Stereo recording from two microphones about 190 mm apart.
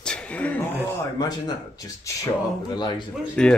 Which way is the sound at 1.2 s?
20° left (ahead or behind).